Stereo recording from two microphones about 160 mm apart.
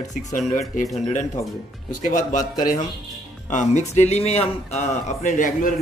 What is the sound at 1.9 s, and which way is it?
Speech, 55° left (ahead or behind).